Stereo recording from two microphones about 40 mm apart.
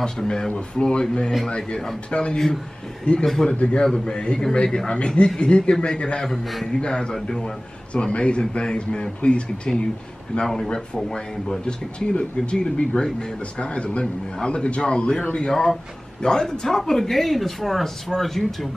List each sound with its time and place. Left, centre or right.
0.0 s a man's voice: centre
3.4 s a man's voice: left
6.2 s a man's voice: centre
6.6 s a man's voice: left
10.4 s speech: centre
11.1 s a man's voice: left
12.9 s a man's voice: centre
15.5 s speech: centre
16.2 s speech: centre